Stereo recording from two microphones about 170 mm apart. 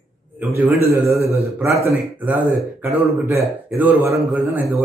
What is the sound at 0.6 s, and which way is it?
A man's voice, 15° right (ahead or behind).